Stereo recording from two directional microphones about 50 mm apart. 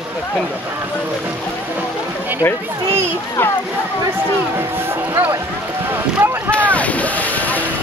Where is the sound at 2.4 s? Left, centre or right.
Left.